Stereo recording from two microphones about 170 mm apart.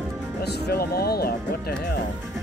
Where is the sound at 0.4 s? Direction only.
70° left (ahead or behind).